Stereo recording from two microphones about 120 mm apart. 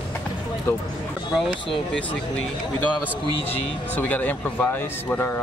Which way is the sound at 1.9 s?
10° left (ahead or behind).